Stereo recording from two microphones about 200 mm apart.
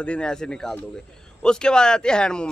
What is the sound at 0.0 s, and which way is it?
A man's voice, 5° left (ahead or behind).